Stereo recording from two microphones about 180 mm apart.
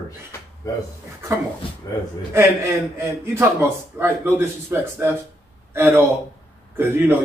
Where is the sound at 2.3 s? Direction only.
15° right (ahead or behind).